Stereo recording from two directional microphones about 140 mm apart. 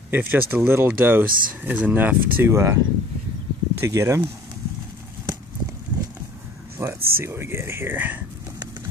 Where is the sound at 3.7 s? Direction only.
20° right (ahead or behind).